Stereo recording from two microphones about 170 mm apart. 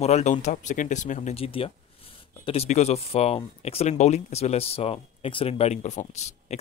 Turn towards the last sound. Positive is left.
turn(degrees=40)  # may be behind; listen again after turning